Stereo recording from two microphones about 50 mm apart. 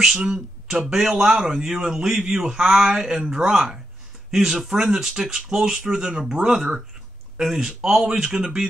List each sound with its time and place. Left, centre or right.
0.3 s a man's voice: centre